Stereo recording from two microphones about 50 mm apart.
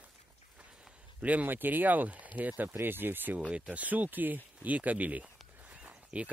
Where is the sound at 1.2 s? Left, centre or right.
Right.